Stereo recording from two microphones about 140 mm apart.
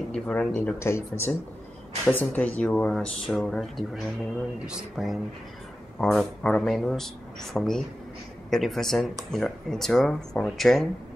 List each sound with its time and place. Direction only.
0.1 s speech: 5° left (ahead or behind)
0.7 s speech: 20° left (ahead or behind); by 10.9 s centre (ahead or behind)